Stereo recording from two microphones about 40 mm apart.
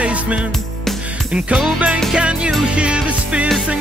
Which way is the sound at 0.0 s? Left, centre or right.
Right.